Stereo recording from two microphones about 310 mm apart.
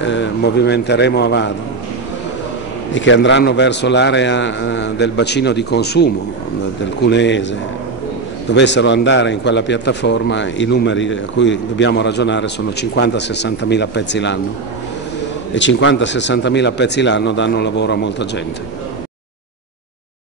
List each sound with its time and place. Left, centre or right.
0.0 s a man's voice: left
2.9 s a man's voice: left
8.5 s a man's voice: left
15.5 s a man's voice: left